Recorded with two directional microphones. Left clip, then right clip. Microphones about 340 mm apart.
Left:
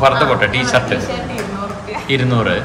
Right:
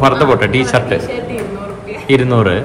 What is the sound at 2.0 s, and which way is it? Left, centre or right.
Speech, centre.